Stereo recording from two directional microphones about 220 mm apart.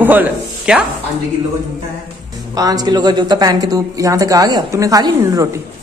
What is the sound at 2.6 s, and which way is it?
Speech, 15° right (ahead or behind).